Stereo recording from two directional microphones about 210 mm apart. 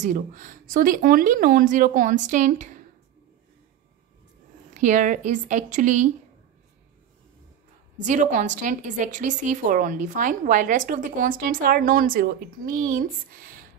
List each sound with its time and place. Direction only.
0.0 s a woman's voice: 40° right (ahead or behind)
4.7 s a woman's voice: 35° right (ahead or behind)
8.0 s a woman's voice: 35° right (ahead or behind)